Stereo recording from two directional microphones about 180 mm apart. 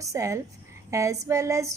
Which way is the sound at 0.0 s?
15° right (ahead or behind).